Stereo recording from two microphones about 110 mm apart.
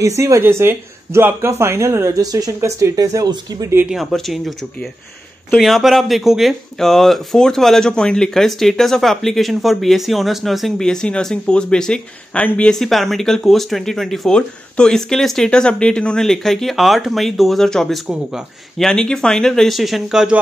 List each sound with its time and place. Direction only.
0.0 s speech: 25° right (ahead or behind)
3.9 s speech: centre (ahead or behind)